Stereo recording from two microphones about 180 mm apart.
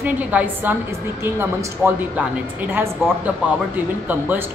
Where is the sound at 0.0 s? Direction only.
10° right (ahead or behind).